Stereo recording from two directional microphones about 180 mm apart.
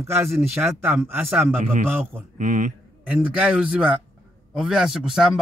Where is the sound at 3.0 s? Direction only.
5° right (ahead or behind).